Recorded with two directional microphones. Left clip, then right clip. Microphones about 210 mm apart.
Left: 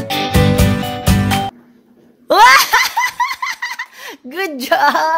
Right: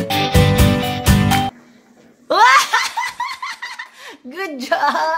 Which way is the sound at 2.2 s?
40° left (ahead or behind).